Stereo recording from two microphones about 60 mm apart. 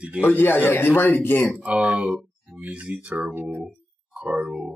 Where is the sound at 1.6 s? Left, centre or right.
Centre.